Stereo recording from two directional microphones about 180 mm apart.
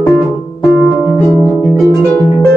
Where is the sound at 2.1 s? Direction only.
10° left (ahead or behind).